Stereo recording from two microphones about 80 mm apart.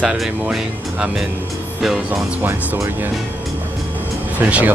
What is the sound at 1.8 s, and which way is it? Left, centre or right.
Speech, centre.